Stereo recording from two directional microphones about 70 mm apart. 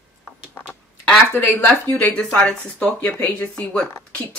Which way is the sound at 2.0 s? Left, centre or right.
Centre.